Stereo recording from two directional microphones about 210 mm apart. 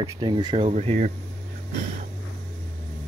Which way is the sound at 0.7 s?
35° right (ahead or behind).